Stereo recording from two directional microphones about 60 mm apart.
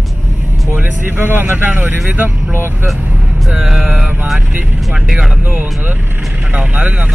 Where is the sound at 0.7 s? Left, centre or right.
Right.